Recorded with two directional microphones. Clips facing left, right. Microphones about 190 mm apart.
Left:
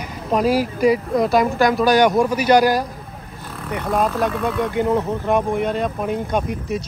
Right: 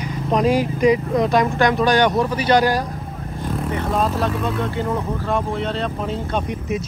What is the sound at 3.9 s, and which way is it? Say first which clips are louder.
Speech: left 3 dB; 15° left (ahead or behind).